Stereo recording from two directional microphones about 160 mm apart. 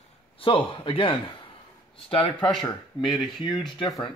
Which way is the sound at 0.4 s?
35° left (ahead or behind).